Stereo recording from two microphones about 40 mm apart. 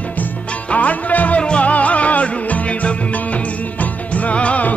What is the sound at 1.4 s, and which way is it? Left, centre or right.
Music, left.